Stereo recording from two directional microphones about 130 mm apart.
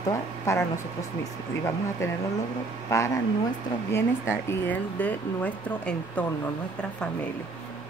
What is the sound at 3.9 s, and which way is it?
A woman's voice, 20° left (ahead or behind).